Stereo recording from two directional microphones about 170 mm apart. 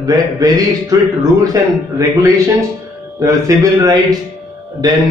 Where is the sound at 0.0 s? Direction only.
20° right (ahead or behind).